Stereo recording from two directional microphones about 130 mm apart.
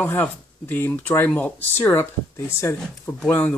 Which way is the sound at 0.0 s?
15° left (ahead or behind).